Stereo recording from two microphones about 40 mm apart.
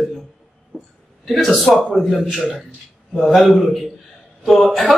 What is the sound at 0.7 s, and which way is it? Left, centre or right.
Speech, right.